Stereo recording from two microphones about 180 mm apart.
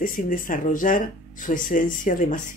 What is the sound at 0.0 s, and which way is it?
Speech, 50° left (ahead or behind).